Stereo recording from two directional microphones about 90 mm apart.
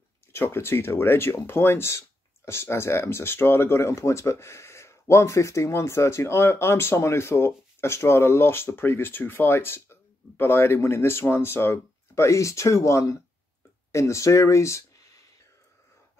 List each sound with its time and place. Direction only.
0.3 s speech: 30° left (ahead or behind)